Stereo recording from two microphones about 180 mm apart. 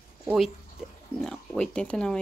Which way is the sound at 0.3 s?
Centre (ahead or behind).